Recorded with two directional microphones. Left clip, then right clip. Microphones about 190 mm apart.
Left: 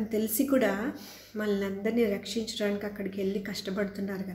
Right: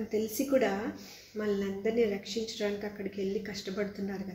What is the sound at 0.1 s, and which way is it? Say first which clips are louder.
Speech: left 1 dB; 15° left (ahead or behind).